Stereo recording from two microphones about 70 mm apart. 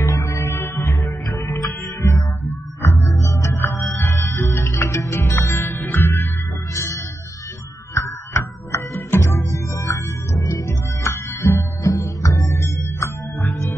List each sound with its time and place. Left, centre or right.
0.0 s music: left
3.5 s music: left
6.7 s music: left